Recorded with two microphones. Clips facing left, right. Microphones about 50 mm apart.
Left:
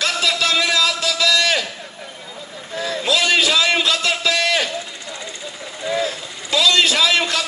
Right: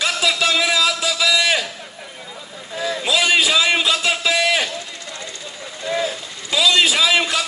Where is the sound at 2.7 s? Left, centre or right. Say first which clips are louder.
Even; centre.